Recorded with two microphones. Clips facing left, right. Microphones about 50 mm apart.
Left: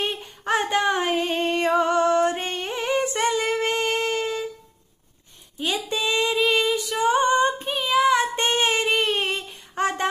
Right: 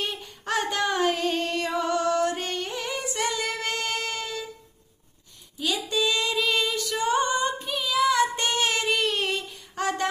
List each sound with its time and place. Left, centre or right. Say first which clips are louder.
0.0 s female singing: left 4 dB; left
5.6 s female singing: left 1 dB; left